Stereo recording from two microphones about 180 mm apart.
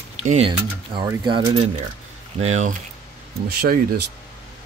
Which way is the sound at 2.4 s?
40° right (ahead or behind).